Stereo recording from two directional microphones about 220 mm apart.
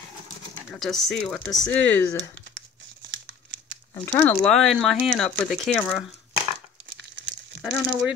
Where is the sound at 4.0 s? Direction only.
10° left (ahead or behind).